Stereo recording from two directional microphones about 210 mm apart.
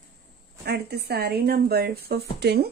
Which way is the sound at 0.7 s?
50° right (ahead or behind).